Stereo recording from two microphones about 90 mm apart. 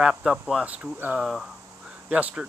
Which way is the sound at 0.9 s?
20° right (ahead or behind).